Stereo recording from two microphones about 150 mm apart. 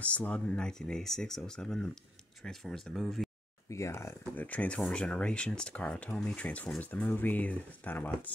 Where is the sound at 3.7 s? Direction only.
20° left (ahead or behind).